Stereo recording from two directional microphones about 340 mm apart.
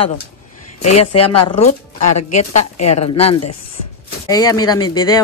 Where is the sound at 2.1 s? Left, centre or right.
Left.